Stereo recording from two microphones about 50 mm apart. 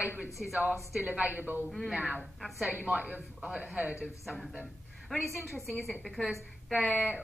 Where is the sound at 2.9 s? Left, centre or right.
Right.